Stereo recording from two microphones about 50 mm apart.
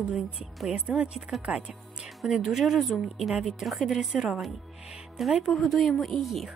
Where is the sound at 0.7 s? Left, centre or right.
Right.